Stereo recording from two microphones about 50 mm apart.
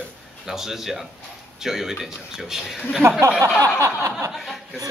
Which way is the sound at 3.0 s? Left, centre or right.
Right.